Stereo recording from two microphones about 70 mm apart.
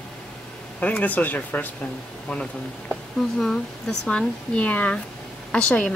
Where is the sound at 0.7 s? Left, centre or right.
Centre.